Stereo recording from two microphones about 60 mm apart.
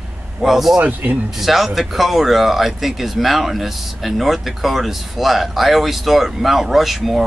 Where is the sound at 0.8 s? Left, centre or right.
Right.